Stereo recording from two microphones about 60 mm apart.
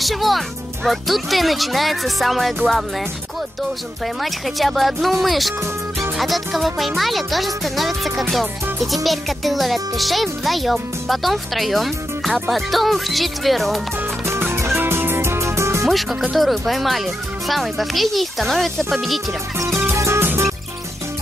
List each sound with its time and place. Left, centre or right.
0.0 s a child's voice: centre
4.2 s a child's voice: centre
5.9 s music: centre
7.0 s a child's voice: centre
14.4 s music: right
15.9 s a child's voice: centre
19.9 s music: right